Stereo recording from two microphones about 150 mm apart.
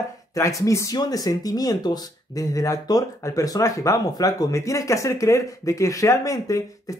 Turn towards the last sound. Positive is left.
turn(degrees=25)  # may be behind; listen again after turning